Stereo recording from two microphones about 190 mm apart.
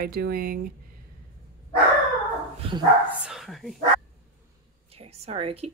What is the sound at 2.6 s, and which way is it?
Speech, 30° right (ahead or behind).